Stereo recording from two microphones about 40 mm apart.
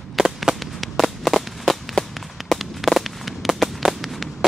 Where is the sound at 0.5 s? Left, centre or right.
Centre.